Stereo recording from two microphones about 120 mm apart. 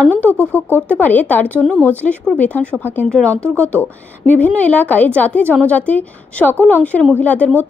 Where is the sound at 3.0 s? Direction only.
5° left (ahead or behind).